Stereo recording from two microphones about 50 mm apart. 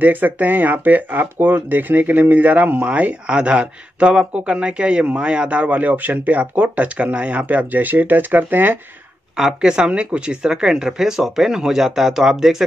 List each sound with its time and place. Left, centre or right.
0.0 s speech: right
9.4 s speech: centre